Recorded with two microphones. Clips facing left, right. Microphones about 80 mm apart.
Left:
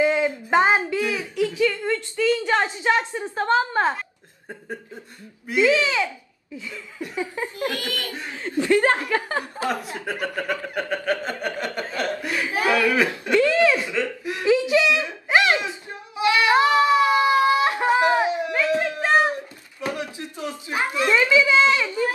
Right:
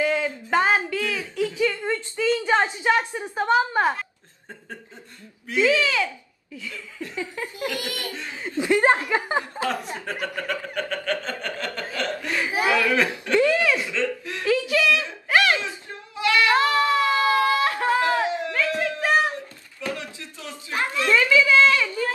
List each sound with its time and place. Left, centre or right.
0.0 s a sound: left
1.6 s speech: centre
5.5 s speech: centre
7.7 s speech: right
8.1 s speech: centre
8.4 s speech: centre
10.2 s a sound: centre
12.4 s a sound: centre
12.7 s speech: centre
13.6 s wail: left